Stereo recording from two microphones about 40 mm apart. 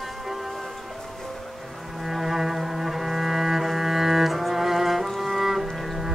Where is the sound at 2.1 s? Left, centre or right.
Centre.